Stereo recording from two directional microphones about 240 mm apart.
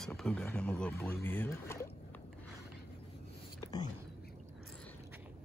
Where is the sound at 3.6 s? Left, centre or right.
Centre.